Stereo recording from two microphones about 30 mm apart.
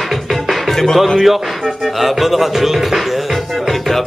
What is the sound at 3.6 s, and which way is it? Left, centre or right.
Music, centre.